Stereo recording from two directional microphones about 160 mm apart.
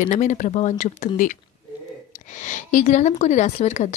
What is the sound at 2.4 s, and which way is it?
Speech, 50° left (ahead or behind).